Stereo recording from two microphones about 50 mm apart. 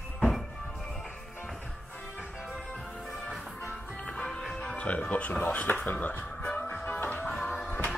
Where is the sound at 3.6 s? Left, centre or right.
Centre.